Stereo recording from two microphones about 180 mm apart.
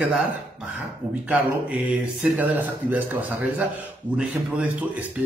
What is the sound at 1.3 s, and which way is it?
A man's voice, 10° right (ahead or behind).